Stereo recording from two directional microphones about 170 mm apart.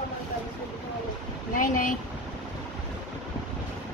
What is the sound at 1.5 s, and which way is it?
Speech, 50° left (ahead or behind).